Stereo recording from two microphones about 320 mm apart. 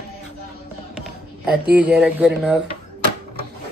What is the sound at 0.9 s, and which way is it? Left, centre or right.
Music, centre.